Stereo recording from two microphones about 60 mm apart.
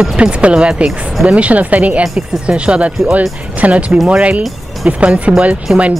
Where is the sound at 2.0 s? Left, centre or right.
Centre.